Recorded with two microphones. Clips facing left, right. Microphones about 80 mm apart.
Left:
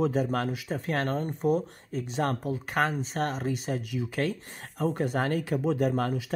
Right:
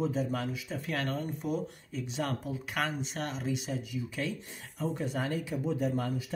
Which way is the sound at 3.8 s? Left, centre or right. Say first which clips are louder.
Left 5 dB; left.